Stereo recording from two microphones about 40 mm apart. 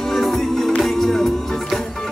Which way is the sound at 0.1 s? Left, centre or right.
Centre.